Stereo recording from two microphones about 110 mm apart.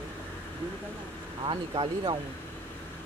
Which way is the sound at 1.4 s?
50° right (ahead or behind).